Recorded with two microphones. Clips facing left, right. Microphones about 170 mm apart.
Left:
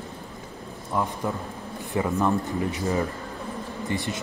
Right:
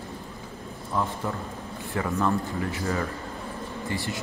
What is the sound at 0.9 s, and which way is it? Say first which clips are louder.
Speech: left 2 dB; 15° left (ahead or behind).